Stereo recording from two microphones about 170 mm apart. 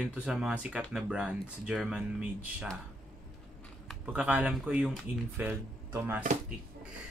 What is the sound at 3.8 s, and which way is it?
Speech, 5° right (ahead or behind).